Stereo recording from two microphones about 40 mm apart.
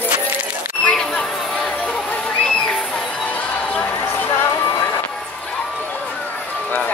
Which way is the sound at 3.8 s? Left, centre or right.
Left.